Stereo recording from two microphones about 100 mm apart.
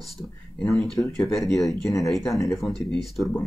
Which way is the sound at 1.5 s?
Centre (ahead or behind).